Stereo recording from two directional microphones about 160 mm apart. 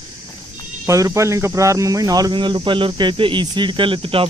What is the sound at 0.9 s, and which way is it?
Speech, 20° right (ahead or behind).